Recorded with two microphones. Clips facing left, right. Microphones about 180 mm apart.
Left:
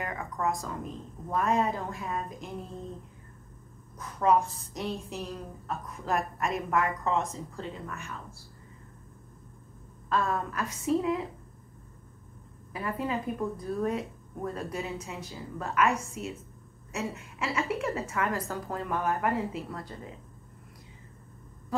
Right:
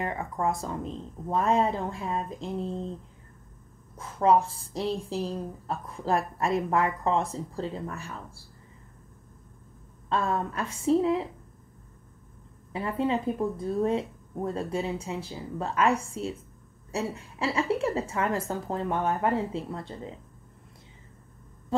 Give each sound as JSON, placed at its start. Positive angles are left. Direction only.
{"t": 0.0, "sound": "music", "side_deg": -30}
{"t": 0.6, "sound": "speech", "side_deg": -30}
{"t": 4.0, "sound": "a woman's voice", "side_deg": -30}
{"t": 10.0, "sound": "speech", "side_deg": -30}
{"t": 12.7, "sound": "a woman's voice", "side_deg": -25}